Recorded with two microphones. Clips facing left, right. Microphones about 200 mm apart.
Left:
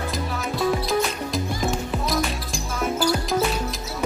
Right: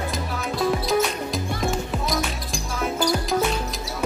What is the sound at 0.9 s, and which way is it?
Music, centre (ahead or behind).